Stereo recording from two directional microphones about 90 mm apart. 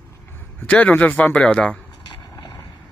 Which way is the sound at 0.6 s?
15° left (ahead or behind).